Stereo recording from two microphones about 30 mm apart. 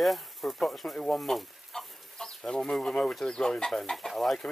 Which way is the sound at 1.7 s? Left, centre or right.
Centre.